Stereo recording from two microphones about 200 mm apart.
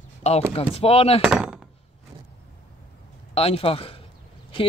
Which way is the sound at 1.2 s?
5° right (ahead or behind).